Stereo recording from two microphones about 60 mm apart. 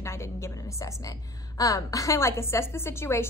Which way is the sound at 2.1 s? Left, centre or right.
Left.